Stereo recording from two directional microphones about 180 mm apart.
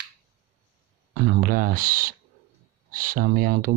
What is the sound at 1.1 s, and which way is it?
Speech, 55° right (ahead or behind).